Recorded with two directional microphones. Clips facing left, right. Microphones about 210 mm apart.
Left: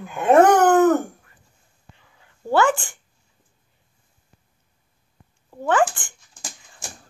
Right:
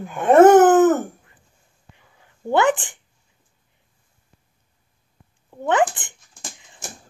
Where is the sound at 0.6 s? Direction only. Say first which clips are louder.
Right 2 dB; 5° right (ahead or behind).